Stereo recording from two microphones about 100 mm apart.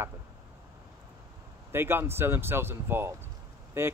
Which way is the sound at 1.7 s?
25° right (ahead or behind).